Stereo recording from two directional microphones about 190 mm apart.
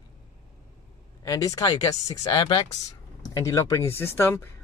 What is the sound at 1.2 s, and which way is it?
Speech, 20° left (ahead or behind).